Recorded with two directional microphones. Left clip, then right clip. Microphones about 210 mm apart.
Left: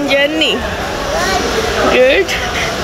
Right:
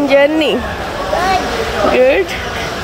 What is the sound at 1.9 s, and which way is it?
Speech, 10° right (ahead or behind).